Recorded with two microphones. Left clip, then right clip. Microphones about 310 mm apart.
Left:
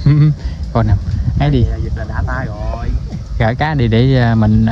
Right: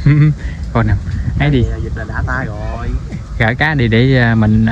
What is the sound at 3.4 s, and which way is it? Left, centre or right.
Speech, centre.